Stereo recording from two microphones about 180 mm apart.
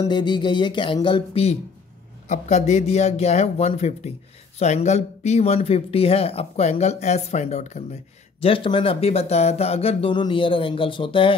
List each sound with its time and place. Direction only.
0.0 s speech: 25° left (ahead or behind)